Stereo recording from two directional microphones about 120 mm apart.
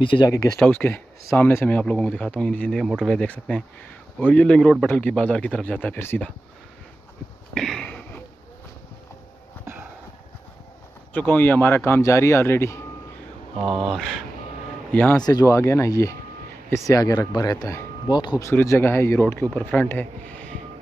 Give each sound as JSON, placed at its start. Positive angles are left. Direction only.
{"t": 0.0, "sound": "speech", "side_deg": 45}
{"t": 0.6, "sound": "speech", "side_deg": 15}
{"t": 7.5, "sound": "a sound", "side_deg": 5}
{"t": 11.1, "sound": "speech", "side_deg": 15}
{"t": 13.7, "sound": "speech", "side_deg": 0}
{"t": 15.2, "sound": "speech", "side_deg": 30}